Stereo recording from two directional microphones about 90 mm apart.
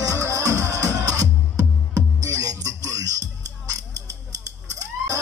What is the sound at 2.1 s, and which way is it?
Music, 40° right (ahead or behind).